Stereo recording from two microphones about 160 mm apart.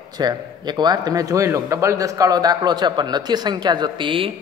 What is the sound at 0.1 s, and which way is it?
A man's voice, 25° right (ahead or behind).